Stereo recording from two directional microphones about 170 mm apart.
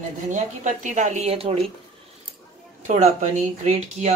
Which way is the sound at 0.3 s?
45° right (ahead or behind).